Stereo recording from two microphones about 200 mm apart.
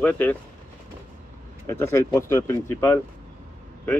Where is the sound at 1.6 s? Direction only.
15° left (ahead or behind).